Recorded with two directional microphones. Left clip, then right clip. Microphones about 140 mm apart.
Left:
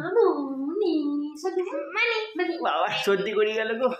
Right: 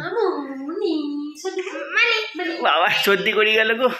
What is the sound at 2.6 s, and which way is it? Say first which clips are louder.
Mantra: right 9 dB; 20° right (ahead or behind).